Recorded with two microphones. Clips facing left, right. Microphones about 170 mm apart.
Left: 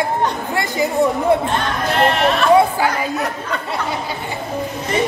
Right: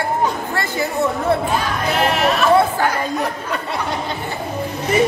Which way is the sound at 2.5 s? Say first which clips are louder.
Left 4 dB; 10° left (ahead or behind).